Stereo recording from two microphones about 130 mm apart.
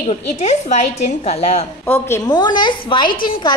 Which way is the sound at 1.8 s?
15° left (ahead or behind).